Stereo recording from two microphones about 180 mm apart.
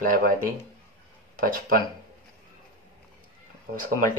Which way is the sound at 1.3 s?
50° right (ahead or behind).